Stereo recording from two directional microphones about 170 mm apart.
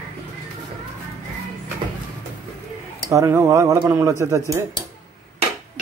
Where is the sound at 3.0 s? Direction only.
15° right (ahead or behind).